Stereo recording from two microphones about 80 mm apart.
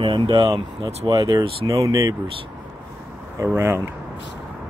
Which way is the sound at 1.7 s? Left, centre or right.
Right.